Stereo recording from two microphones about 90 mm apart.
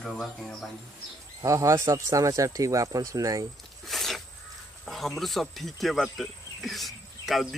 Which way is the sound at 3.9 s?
Centre (ahead or behind).